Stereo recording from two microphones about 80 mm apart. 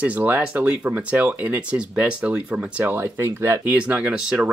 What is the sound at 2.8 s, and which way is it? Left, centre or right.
Speech, right.